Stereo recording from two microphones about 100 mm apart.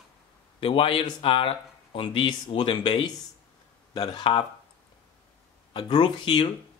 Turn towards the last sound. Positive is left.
turn(degrees=55)  # may be behind; listen again after turning